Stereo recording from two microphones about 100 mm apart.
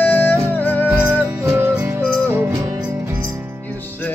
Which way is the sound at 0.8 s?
20° right (ahead or behind).